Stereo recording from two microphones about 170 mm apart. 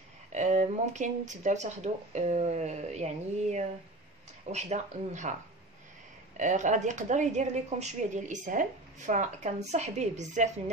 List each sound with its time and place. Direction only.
0.3 s speech: 45° right (ahead or behind)
6.3 s speech: 45° right (ahead or behind)